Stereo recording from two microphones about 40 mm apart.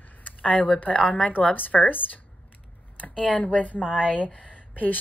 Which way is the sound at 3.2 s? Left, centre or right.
Left.